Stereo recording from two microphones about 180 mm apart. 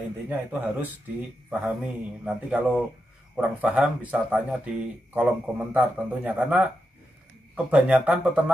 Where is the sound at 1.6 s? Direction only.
10° right (ahead or behind).